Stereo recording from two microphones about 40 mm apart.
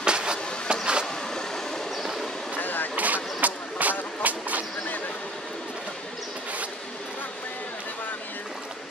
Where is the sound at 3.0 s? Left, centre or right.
Right.